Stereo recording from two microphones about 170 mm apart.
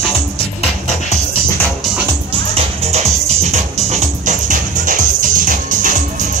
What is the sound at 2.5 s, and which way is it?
Music, 40° right (ahead or behind).